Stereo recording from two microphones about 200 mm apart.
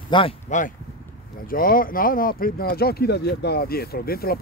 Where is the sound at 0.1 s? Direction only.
25° left (ahead or behind).